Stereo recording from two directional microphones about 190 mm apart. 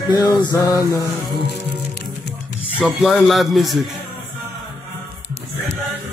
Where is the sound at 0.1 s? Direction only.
20° left (ahead or behind).